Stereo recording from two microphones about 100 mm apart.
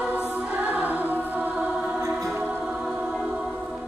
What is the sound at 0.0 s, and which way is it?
Music, 15° right (ahead or behind).